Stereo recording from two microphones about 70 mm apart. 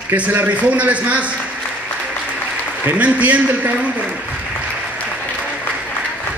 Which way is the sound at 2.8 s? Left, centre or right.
Right.